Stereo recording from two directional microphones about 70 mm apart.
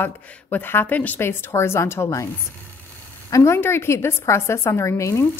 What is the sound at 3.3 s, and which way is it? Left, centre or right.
A woman's voice, left.